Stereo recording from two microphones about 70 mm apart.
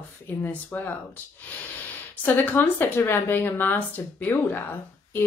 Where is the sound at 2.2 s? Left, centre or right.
Left.